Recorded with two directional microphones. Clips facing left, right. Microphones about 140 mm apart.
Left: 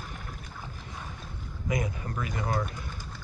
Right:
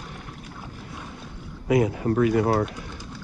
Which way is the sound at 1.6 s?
70° right (ahead or behind).